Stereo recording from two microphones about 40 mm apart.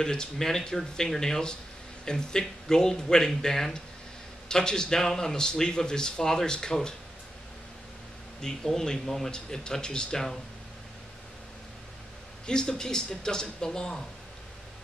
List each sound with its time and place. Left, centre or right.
0.0 s speech: centre
8.6 s speech: centre
12.4 s speech: centre